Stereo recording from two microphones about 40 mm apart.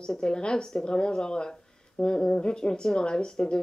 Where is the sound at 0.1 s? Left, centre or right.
Centre.